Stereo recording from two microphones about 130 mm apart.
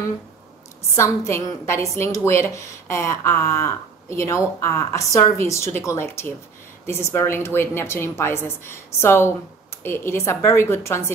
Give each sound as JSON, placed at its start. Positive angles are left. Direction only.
{"t": 0.9, "sound": "a woman's voice", "side_deg": 20}